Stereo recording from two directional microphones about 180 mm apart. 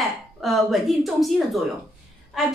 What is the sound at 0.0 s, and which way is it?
A woman's voice, centre (ahead or behind).